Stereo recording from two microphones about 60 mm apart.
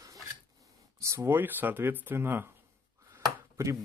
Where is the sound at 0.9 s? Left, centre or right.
Right.